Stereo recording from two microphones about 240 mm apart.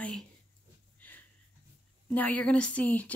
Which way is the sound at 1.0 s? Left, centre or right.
Centre.